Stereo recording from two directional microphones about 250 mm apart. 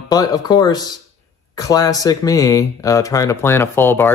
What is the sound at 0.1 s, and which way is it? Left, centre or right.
Speech, centre.